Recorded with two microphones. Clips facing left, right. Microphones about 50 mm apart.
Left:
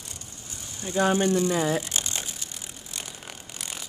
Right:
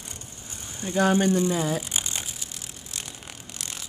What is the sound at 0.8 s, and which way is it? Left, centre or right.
Speech, right.